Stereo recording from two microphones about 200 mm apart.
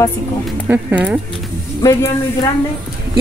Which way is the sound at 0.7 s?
10° right (ahead or behind).